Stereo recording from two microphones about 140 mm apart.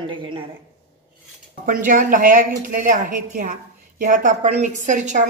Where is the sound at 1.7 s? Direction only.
75° right (ahead or behind).